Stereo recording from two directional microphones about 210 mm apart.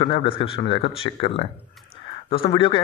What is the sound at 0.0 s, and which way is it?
A man's voice, 25° left (ahead or behind).